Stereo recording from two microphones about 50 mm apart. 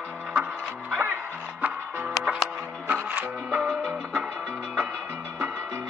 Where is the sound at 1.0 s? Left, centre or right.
Right.